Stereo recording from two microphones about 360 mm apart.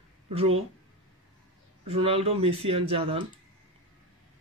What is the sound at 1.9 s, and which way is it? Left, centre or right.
A man's voice, centre.